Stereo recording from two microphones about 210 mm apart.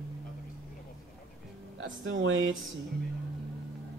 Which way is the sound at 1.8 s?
65° right (ahead or behind).